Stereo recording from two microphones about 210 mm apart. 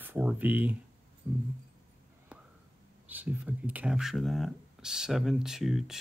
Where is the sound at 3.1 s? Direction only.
10° right (ahead or behind).